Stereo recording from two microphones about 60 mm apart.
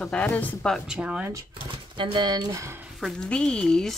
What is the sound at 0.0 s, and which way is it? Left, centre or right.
Speech, left.